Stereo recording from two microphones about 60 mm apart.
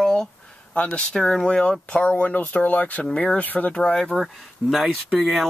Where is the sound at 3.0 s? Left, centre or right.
Centre.